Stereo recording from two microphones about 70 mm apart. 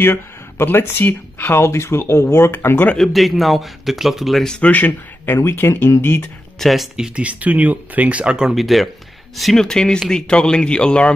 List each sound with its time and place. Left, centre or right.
0.0 s speech: left
3.0 s speech: centre
4.6 s speech: left
6.6 s speech: centre
7.2 s speech: centre
8.5 s speech: centre